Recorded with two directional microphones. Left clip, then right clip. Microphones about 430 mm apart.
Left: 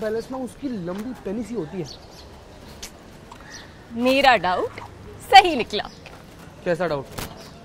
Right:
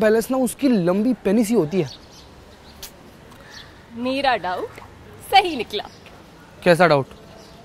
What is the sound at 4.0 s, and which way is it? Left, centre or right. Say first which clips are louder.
Speech: left 4 dB; centre.